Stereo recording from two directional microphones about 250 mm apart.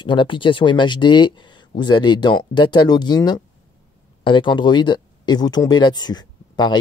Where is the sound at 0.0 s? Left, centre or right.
Centre.